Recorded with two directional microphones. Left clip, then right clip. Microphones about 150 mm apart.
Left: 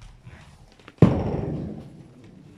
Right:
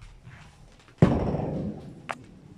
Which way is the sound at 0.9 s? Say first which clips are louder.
Left 5 dB; 90° left.